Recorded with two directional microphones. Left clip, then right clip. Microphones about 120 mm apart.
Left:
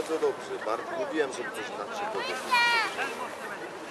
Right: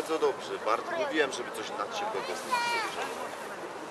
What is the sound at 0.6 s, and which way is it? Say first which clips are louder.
Speech: right 2 dB; 20° right (ahead or behind).